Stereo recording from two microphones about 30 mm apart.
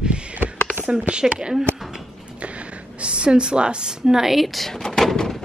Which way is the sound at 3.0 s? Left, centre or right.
Right.